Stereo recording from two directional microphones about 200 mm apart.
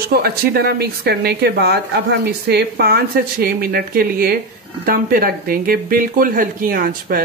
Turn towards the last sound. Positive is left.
turn(degrees=-45)  # may be behind; listen again after turning